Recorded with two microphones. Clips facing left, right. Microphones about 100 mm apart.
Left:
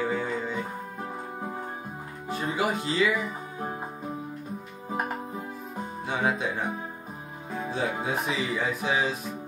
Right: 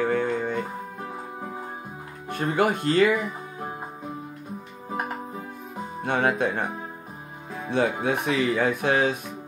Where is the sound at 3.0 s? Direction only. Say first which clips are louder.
Right 5 dB; centre (ahead or behind).